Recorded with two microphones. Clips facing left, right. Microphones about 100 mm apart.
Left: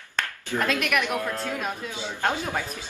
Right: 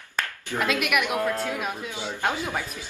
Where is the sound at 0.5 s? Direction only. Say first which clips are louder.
Even; 10° right (ahead or behind).